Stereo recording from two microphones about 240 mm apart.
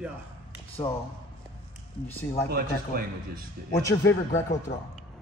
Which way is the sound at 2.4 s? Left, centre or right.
Right.